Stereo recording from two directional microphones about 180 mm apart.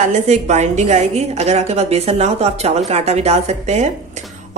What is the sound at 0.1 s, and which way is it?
Speech, 40° right (ahead or behind).